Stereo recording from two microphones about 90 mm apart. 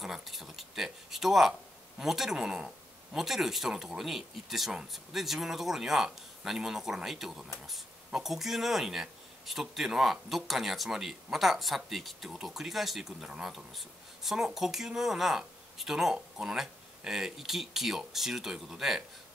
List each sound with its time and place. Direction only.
0.0 s speech: 5° right (ahead or behind)